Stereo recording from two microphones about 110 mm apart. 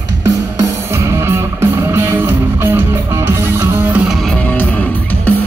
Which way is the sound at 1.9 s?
20° right (ahead or behind).